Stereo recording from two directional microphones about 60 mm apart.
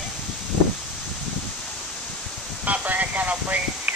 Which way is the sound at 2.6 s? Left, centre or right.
Right.